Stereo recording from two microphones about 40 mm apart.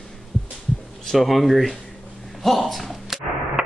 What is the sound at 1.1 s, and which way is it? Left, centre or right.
Speech, centre.